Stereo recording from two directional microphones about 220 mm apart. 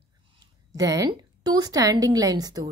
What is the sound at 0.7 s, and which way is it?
A woman's voice, 15° right (ahead or behind).